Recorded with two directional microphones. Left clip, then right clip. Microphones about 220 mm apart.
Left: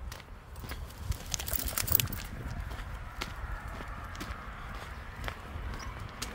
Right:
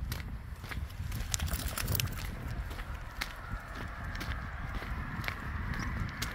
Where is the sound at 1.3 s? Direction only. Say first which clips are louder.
Left 1 dB; 15° left (ahead or behind).